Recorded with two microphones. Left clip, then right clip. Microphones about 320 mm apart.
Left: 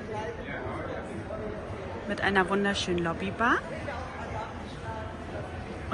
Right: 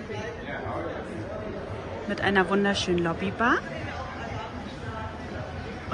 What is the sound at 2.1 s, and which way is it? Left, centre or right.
Speech, centre.